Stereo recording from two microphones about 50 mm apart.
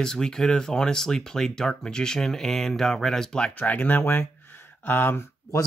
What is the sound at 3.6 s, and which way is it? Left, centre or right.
Speech, left.